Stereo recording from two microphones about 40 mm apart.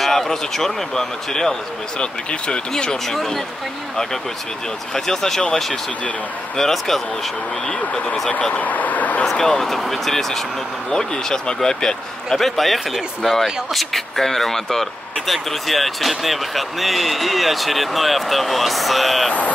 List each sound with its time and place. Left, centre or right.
0.0 s speech: centre
2.0 s speech: left
2.7 s speech: centre
7.8 s speech: left
8.6 s speech: left
9.2 s a man's voice: centre